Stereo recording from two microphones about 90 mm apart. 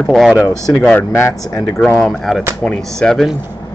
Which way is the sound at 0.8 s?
15° left (ahead or behind).